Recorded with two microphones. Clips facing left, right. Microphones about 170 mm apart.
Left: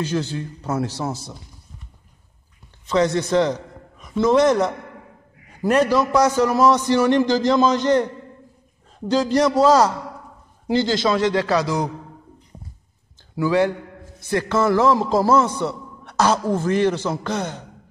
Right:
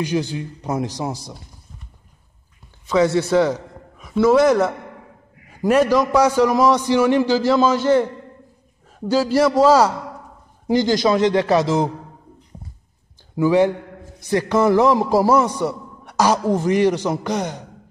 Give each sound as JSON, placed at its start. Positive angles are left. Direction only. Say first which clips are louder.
{"t": 0.0, "sound": "a man's voice", "louder": "right 2 dB", "side_deg": -15}
{"t": 3.3, "sound": "a man's voice", "louder": "right 2 dB", "side_deg": -5}
{"t": 13.4, "sound": "a man's voice", "louder": "right 3 dB", "side_deg": -20}